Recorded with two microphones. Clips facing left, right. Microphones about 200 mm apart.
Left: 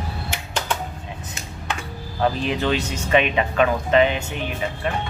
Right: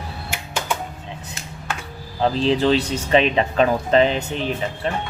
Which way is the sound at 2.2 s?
25° right (ahead or behind).